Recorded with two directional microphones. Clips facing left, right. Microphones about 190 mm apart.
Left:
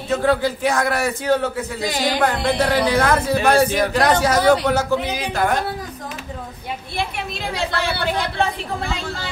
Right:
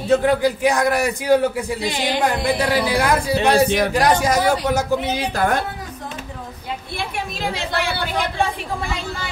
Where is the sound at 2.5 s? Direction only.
15° right (ahead or behind).